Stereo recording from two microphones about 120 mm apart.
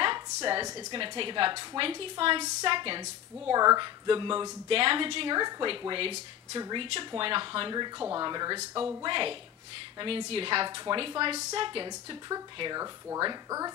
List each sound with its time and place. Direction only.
0.0 s a sound: 40° right (ahead or behind)
0.9 s a woman's voice: 45° right (ahead or behind)
3.0 s a woman's voice: 30° right (ahead or behind)
8.7 s speech: 15° right (ahead or behind)
9.0 s a woman's voice: 45° right (ahead or behind)